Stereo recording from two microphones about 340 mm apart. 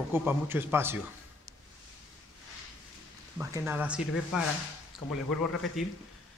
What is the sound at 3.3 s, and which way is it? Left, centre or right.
A man's voice, centre.